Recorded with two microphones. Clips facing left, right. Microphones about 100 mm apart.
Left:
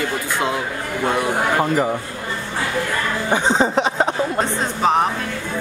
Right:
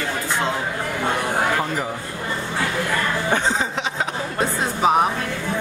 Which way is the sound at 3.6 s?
40° left (ahead or behind).